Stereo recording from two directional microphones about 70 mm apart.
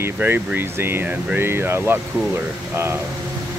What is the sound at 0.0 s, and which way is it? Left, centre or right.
Speech, right.